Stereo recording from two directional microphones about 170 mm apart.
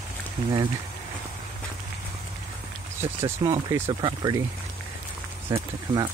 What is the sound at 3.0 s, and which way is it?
Speech, 15° right (ahead or behind).